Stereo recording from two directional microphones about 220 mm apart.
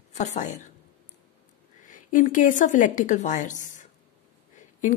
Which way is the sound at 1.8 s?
35° left (ahead or behind).